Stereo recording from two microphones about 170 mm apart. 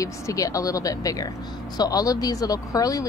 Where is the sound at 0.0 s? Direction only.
20° left (ahead or behind).